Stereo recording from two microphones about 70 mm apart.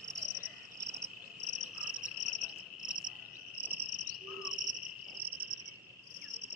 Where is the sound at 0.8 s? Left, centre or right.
Right.